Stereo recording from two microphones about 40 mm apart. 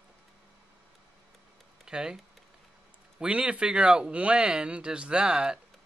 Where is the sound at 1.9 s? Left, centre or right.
Centre.